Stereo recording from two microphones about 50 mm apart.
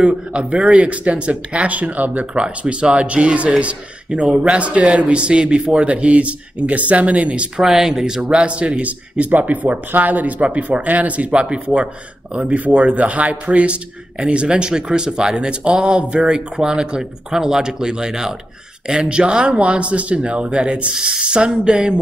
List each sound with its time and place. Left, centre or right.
0.0 s a man's voice: right
2.3 s a man's voice: right
7.5 s speech: centre
8.2 s a man's voice: right